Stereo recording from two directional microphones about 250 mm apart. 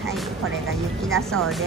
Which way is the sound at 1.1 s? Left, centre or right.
Centre.